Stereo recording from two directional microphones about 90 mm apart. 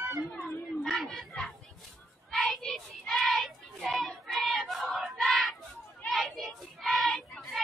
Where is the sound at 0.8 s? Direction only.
Centre (ahead or behind).